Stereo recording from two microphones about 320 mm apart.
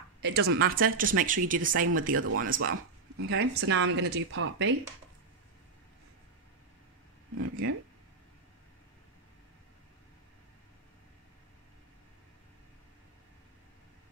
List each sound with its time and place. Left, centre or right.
0.2 s a woman's voice: right
2.1 s speech: right
7.3 s speech: right